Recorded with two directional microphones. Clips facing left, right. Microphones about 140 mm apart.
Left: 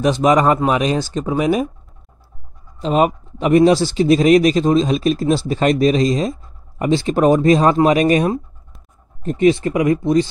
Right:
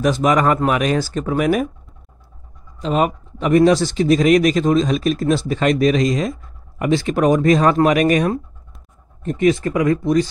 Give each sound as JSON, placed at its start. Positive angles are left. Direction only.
{"t": 0.0, "sound": "speech", "side_deg": 25}
{"t": 2.8, "sound": "speech", "side_deg": 35}